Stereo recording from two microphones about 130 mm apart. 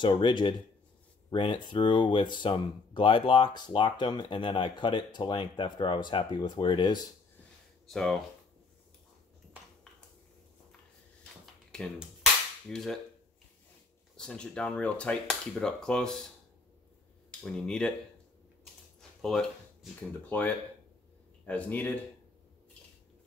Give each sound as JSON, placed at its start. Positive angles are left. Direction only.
{"t": 0.0, "sound": "speech", "side_deg": 35}
{"t": 7.9, "sound": "speech", "side_deg": 5}
{"t": 11.7, "sound": "cap gun", "side_deg": 5}
{"t": 14.1, "sound": "speech", "side_deg": 5}
{"t": 17.4, "sound": "speech", "side_deg": 5}
{"t": 18.9, "sound": "a sound", "side_deg": 5}
{"t": 20.2, "sound": "speech", "side_deg": 15}